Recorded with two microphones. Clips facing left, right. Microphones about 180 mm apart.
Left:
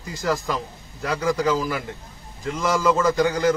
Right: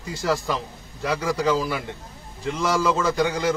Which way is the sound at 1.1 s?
5° right (ahead or behind).